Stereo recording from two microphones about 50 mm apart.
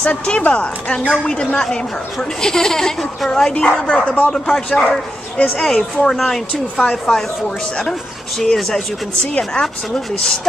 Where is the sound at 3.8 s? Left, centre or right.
Centre.